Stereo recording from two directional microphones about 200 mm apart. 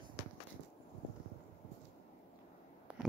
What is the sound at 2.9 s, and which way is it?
Cat, 5° right (ahead or behind).